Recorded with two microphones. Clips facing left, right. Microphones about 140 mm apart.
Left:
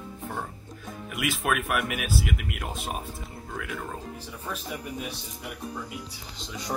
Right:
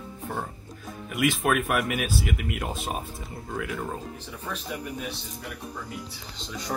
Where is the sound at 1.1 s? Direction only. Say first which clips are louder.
Right 4 dB; 5° left (ahead or behind).